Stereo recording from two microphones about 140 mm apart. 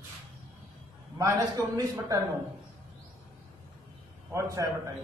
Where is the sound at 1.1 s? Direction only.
25° right (ahead or behind).